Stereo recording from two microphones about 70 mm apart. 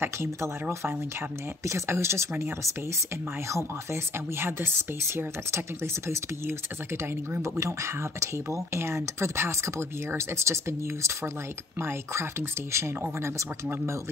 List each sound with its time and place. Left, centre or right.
0.0 s speech: right
7.5 s speech: right